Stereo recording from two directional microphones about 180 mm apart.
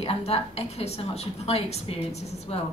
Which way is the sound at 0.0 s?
35° left (ahead or behind).